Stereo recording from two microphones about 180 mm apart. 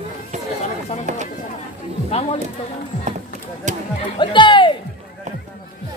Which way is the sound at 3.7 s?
40° right (ahead or behind).